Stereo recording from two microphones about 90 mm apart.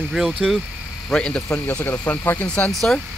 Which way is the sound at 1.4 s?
20° left (ahead or behind).